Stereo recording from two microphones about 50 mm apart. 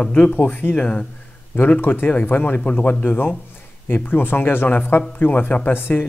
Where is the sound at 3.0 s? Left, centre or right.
Left.